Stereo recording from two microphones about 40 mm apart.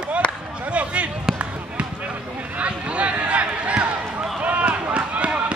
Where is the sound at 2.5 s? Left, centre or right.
Right.